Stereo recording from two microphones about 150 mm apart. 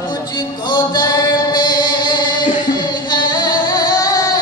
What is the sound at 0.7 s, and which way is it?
Male singing, 25° left (ahead or behind).